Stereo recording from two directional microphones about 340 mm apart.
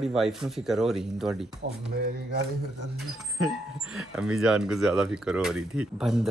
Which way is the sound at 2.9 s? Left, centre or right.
Centre.